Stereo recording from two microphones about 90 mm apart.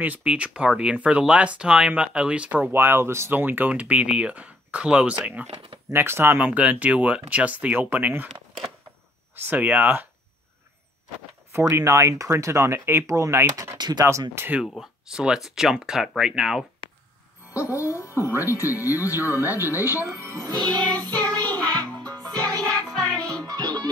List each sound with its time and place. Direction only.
0.0 s speech: 15° right (ahead or behind)
5.5 s speech: 90° right
5.9 s speech: 25° right (ahead or behind)
9.3 s speech: 20° right (ahead or behind)
11.5 s speech: 30° right (ahead or behind)
13.7 s speech: 50° right (ahead or behind)
14.3 s speech: 25° right (ahead or behind)
14.8 s speech: 5° right (ahead or behind)
17.6 s speech: 35° left (ahead or behind)
20.0 s music: 30° right (ahead or behind)
20.3 s speech: 45° right (ahead or behind)
20.6 s music: 15° left (ahead or behind)
23.3 s music: 45° right (ahead or behind)